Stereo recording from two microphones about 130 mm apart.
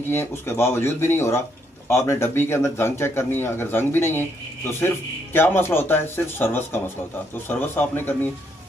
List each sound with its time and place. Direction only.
0.1 s a man's voice: 20° left (ahead or behind)